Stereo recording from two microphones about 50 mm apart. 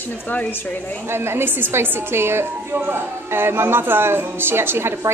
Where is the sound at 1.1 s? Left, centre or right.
Right.